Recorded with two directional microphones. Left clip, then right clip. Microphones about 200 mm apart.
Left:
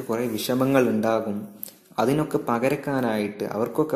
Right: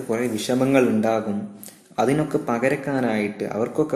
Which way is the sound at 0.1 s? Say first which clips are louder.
Right 2 dB; 20° left (ahead or behind).